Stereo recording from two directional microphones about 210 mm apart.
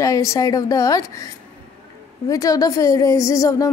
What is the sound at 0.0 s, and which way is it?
A woman's voice, 15° left (ahead or behind).